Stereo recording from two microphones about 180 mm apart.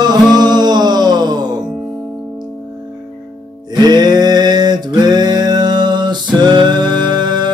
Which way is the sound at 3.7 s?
25° right (ahead or behind).